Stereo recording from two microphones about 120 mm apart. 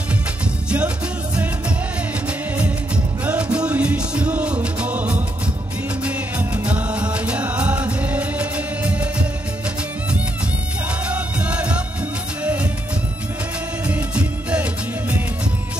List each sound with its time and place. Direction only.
0.7 s music: 10° right (ahead or behind)
3.3 s music: 10° right (ahead or behind)
11.1 s music: 10° right (ahead or behind)
13.8 s music: 10° right (ahead or behind)